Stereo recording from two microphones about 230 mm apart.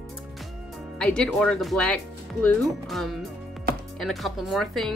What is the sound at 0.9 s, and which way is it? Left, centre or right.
A woman's voice, centre.